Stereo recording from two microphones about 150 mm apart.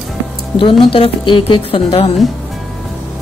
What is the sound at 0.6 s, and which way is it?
Speech, 35° left (ahead or behind).